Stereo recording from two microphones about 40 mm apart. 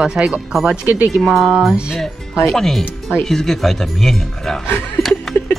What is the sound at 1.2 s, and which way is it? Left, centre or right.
Speech, centre.